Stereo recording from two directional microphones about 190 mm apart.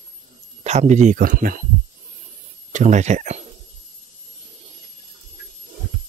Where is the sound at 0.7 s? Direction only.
35° right (ahead or behind).